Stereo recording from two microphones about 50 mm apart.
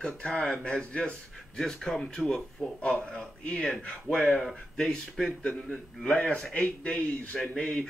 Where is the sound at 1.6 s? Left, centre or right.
Centre.